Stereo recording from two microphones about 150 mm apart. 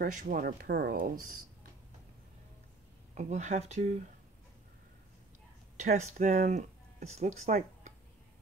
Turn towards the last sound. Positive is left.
turn(degrees=-60)  # may be behind; listen again after turning